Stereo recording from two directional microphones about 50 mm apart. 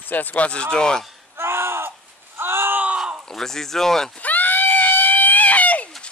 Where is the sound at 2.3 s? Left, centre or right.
Right.